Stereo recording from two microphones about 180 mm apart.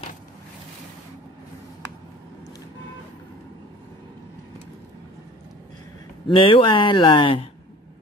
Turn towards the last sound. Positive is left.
turn(degrees=30)  # may be behind; listen again after turning